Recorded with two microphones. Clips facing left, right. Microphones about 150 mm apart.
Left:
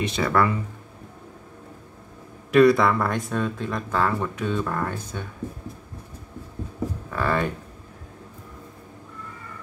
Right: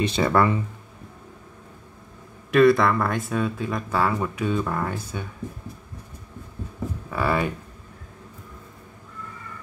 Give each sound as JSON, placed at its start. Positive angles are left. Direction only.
{"t": 0.0, "sound": "speech", "side_deg": -30}
{"t": 2.5, "sound": "speech", "side_deg": 0}
{"t": 7.1, "sound": "speech", "side_deg": -10}